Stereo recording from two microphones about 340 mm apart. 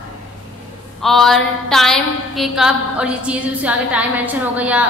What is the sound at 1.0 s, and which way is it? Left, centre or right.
A woman's voice, centre.